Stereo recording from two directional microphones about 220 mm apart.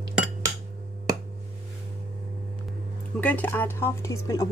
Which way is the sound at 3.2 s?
5° left (ahead or behind).